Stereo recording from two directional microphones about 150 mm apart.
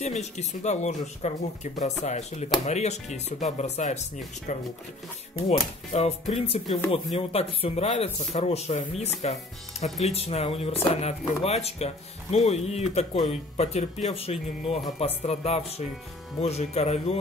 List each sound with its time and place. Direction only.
0.0 s speech: 50° left (ahead or behind)
5.5 s speech: 40° left (ahead or behind)